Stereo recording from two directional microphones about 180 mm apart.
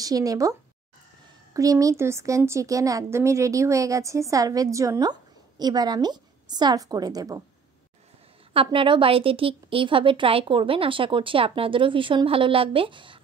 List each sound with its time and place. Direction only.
0.0 s a woman's voice: 20° right (ahead or behind)
8.5 s a woman's voice: 30° right (ahead or behind)